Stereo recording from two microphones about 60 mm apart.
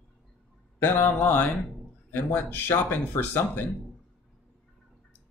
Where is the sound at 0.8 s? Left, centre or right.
Left.